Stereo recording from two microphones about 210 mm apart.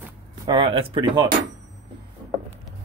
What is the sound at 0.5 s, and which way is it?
Speech, 25° right (ahead or behind).